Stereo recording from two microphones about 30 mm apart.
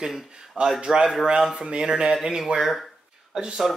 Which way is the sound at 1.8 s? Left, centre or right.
Right.